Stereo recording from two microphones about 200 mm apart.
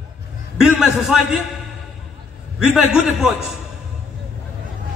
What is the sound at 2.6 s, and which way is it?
Speech, centre (ahead or behind).